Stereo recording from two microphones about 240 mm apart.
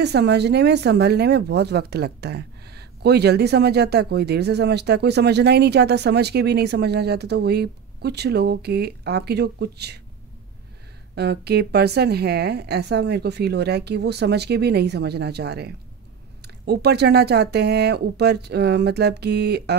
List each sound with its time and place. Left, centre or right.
0.0 s speech: right
11.1 s speech: right